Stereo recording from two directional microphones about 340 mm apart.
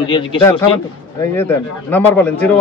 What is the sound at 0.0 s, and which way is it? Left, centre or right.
Speech, centre.